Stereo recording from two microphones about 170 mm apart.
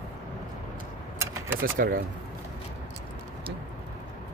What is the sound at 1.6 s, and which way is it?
Speech, 55° right (ahead or behind).